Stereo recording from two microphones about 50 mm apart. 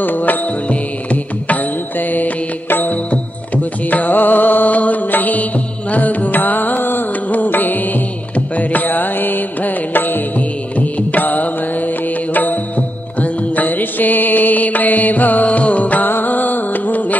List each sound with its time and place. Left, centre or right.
0.0 s music: left